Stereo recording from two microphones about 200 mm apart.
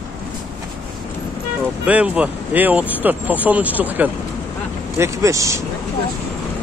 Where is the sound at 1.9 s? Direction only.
5° right (ahead or behind).